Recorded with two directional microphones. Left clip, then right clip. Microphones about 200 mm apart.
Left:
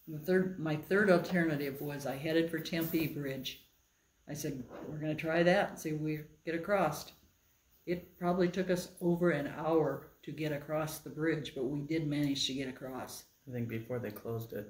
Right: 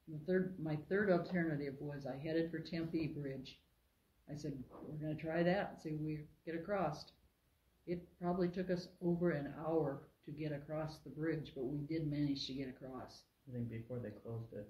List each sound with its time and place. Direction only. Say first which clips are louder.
0.2 s speech: left 7 dB; 5° left (ahead or behind)